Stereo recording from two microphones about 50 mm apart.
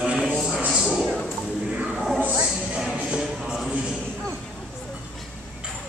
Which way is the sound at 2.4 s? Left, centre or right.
Centre.